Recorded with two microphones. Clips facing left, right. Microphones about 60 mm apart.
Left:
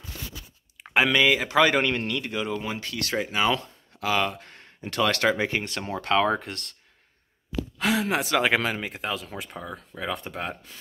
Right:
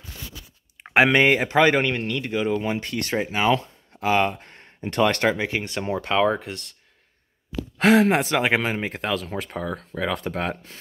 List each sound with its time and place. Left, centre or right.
1.1 s speech: right
1.5 s speech: right
1.8 s speech: centre
2.6 s speech: right
3.3 s speech: centre
4.0 s speech: right; by 6.6 s centre
7.7 s speech: right
8.1 s speech: right
8.4 s speech: centre
8.9 s speech: right